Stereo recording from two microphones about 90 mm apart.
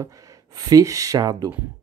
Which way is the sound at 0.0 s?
40° right (ahead or behind).